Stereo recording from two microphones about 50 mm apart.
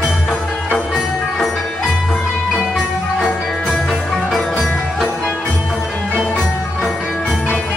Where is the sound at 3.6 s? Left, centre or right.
Centre.